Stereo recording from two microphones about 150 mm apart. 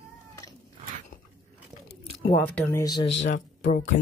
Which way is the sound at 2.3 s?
15° left (ahead or behind).